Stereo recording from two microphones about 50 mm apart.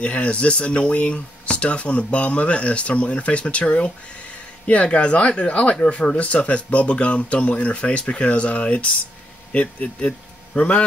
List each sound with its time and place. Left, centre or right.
0.0 s speech: left